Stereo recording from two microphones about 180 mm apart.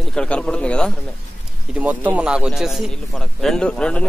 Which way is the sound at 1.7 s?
10° right (ahead or behind).